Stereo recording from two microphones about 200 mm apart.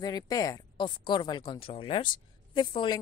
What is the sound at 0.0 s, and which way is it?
Speech, 20° left (ahead or behind).